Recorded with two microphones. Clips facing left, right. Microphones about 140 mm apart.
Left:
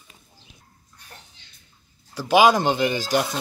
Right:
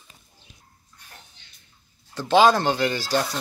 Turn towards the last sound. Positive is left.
turn(degrees=15)  # may be behind; listen again after turning